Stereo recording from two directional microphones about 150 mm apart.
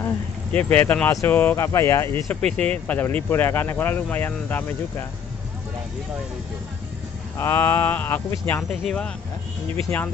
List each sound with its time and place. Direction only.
0.5 s speech: 10° left (ahead or behind)
2.2 s speech: 5° left (ahead or behind)
7.3 s speech: 15° left (ahead or behind)